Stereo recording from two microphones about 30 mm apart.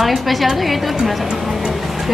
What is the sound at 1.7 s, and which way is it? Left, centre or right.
Vehicle, centre.